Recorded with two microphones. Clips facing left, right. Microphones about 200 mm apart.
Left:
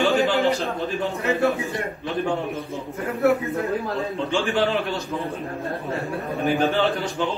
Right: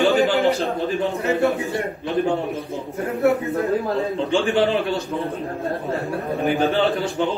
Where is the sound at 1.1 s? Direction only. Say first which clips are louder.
Even; centre (ahead or behind).